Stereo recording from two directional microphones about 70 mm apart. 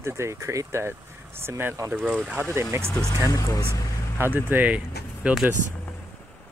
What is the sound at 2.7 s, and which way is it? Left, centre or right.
Speech, right.